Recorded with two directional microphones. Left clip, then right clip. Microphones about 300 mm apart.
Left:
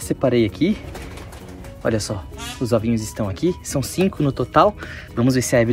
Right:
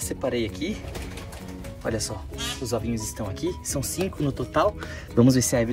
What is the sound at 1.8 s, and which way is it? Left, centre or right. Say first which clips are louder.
Speech: left 7 dB; centre.